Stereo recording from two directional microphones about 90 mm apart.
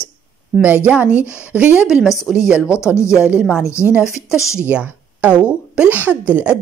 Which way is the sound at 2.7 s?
35° left (ahead or behind).